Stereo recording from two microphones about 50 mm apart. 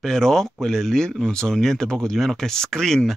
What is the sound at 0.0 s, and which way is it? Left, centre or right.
Speech, centre.